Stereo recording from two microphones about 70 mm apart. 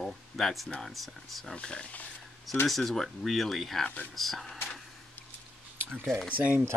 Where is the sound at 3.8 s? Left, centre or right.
Left.